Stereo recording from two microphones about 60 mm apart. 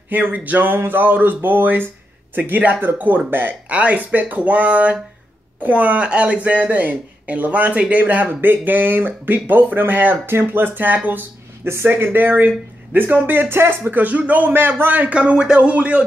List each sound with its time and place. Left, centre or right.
0.1 s speech: right
15.1 s speech: centre